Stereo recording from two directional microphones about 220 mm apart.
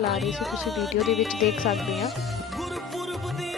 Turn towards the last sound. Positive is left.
turn(degrees=0)  # may be behind; listen again after turning